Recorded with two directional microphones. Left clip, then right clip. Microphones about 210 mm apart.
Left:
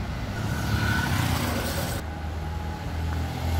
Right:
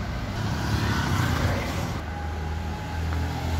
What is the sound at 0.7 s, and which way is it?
Vehicle, 30° left (ahead or behind).